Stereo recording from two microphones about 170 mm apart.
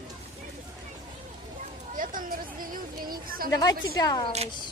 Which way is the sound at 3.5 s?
20° left (ahead or behind).